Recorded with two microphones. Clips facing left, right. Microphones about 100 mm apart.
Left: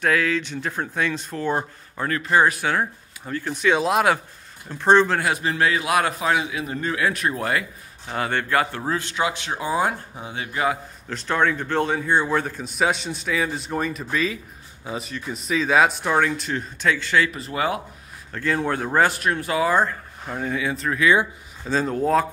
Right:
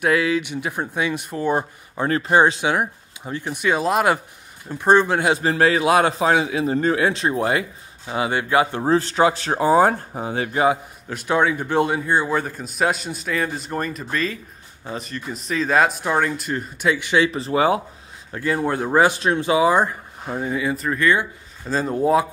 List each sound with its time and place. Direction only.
0.0 s speech: 10° right (ahead or behind)
2.0 s a man's voice: 30° right (ahead or behind)
3.6 s a man's voice: centre (ahead or behind); by 5.4 s 20° right (ahead or behind)
5.4 s a man's voice: 35° right (ahead or behind)
8.1 s speech: 10° right (ahead or behind)
8.8 s speech: 35° right (ahead or behind)
11.1 s a man's voice: 10° right (ahead or behind)
17.3 s a man's voice: 30° right (ahead or behind)
18.3 s speech: 10° right (ahead or behind)
19.1 s a man's voice: 20° right (ahead or behind)